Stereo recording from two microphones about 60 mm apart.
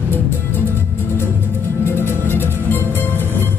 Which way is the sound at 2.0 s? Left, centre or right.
Left.